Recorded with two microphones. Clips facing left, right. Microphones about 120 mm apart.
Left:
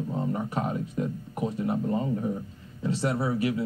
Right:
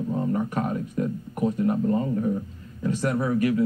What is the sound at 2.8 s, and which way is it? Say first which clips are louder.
Speech: right 2 dB; 25° left (ahead or behind).